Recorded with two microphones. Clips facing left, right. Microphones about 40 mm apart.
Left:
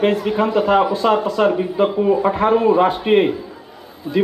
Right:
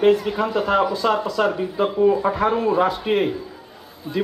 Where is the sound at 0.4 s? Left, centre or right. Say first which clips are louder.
Left 4 dB; left.